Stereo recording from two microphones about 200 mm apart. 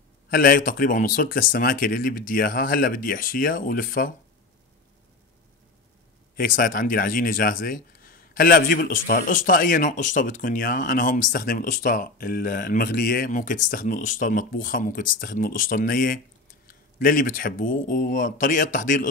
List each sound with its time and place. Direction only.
0.3 s speech: 45° left (ahead or behind)
6.3 s speech: 45° left (ahead or behind)